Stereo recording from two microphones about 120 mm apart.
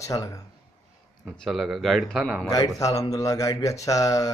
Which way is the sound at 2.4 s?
30° left (ahead or behind).